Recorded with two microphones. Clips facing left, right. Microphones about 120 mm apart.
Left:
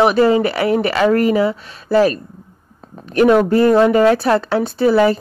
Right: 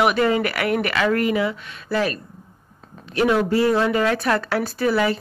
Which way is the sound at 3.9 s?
35° left (ahead or behind).